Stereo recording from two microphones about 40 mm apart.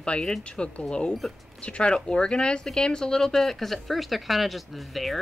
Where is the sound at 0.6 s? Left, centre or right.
Left.